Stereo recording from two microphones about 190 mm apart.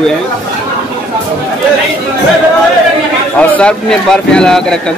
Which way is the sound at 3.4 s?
5° left (ahead or behind).